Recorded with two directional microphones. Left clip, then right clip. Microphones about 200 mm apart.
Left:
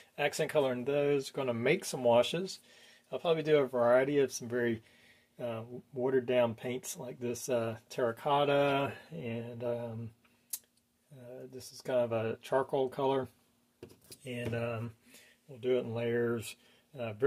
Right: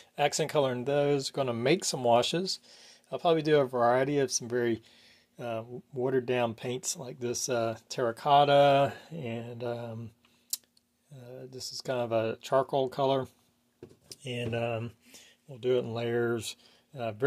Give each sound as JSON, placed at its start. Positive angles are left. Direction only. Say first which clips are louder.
{"t": 0.1, "sound": "speech", "louder": "right 3 dB", "side_deg": -40}
{"t": 11.2, "sound": "speech", "louder": "right 5 dB", "side_deg": -30}